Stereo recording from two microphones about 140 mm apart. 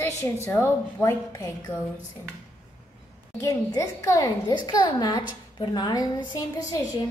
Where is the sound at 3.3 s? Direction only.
25° left (ahead or behind).